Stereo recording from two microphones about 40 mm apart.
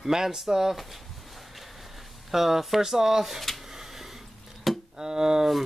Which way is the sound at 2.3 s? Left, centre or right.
Centre.